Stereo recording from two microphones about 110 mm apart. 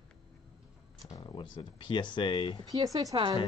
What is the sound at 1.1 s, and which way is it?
Speech, 45° left (ahead or behind).